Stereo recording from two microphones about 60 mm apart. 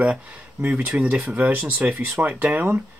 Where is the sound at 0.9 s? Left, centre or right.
Right.